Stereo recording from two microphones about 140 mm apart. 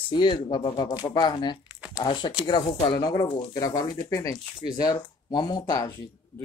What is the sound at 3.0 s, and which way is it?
Speech, 25° left (ahead or behind).